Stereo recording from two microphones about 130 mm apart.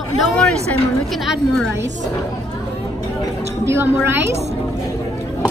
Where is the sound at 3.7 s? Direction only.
20° right (ahead or behind).